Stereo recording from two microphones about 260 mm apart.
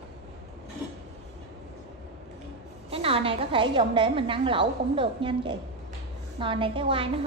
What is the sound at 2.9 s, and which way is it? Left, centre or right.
A woman's voice, right.